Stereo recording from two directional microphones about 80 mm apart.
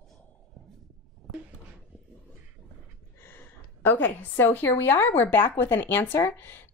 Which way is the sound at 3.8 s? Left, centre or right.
Left.